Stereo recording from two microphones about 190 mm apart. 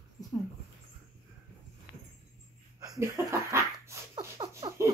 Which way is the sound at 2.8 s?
20° right (ahead or behind).